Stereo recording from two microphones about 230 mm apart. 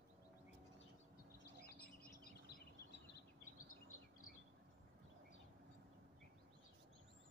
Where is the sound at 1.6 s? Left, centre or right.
Left.